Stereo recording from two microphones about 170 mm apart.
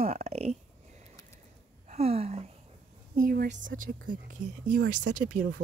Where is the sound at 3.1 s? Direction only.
60° right (ahead or behind).